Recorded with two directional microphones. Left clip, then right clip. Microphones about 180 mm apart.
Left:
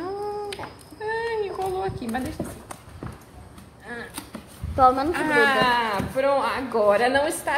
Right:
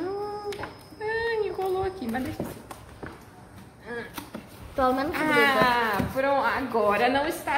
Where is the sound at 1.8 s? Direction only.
5° right (ahead or behind).